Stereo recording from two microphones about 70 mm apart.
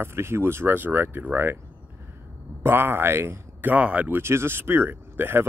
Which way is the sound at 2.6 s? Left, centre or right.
Right.